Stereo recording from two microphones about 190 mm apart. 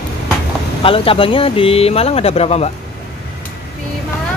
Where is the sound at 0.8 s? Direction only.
30° left (ahead or behind).